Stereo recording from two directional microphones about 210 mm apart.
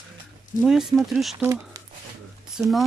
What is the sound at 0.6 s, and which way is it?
Speech, centre (ahead or behind).